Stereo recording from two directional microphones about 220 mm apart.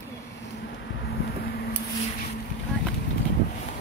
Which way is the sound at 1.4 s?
45° left (ahead or behind).